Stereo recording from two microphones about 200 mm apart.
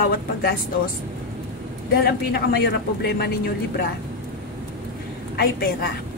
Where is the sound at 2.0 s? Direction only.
55° left (ahead or behind).